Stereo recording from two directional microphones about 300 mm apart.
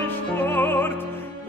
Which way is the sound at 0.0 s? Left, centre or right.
Centre.